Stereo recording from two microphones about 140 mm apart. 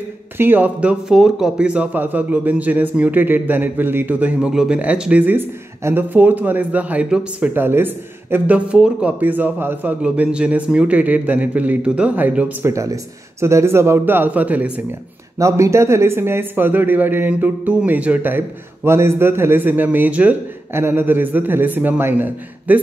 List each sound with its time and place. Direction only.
0.4 s speech: 15° right (ahead or behind)
15.3 s speech: 20° right (ahead or behind)